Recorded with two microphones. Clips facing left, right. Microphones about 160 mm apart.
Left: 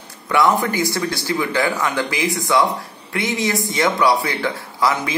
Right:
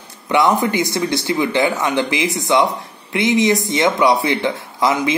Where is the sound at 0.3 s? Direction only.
20° right (ahead or behind).